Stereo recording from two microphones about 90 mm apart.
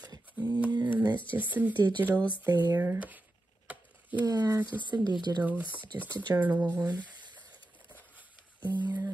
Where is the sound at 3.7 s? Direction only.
20° right (ahead or behind).